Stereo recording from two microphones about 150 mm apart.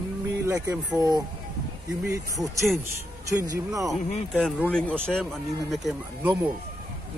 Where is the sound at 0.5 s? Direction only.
25° right (ahead or behind).